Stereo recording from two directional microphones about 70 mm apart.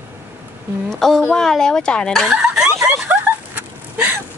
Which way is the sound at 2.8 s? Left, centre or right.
Centre.